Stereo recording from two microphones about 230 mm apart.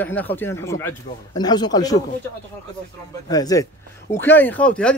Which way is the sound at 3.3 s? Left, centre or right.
Centre.